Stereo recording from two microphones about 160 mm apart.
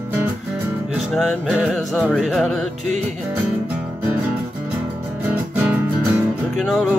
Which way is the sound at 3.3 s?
10° right (ahead or behind).